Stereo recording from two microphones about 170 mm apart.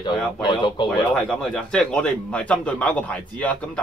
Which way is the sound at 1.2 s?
5° left (ahead or behind).